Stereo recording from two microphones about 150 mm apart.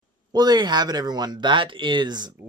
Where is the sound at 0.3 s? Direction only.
25° right (ahead or behind).